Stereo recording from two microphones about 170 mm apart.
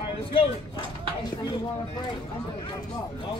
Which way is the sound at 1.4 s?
25° left (ahead or behind).